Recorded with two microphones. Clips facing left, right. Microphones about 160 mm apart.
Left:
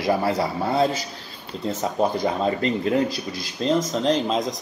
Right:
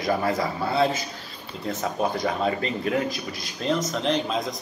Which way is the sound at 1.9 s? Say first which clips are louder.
Left 3 dB; 25° left (ahead or behind).